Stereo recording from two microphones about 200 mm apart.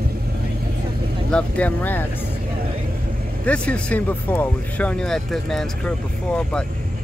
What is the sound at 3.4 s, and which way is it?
Speech, 5° left (ahead or behind).